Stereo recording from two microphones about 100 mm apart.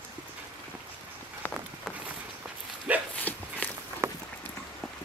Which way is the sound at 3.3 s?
15° left (ahead or behind).